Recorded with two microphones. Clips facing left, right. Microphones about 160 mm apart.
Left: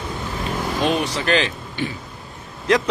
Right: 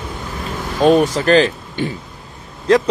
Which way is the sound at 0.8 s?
45° right (ahead or behind).